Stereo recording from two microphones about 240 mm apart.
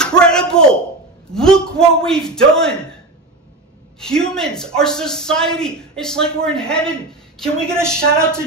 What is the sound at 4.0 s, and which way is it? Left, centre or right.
Speech, centre.